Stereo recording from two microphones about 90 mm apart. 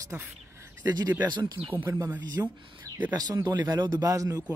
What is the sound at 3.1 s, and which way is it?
Speech, 45° right (ahead or behind).